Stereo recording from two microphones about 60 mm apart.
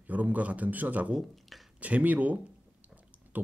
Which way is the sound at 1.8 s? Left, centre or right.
Right.